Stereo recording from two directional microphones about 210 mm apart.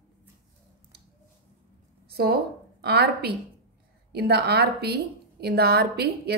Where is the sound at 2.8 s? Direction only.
50° right (ahead or behind).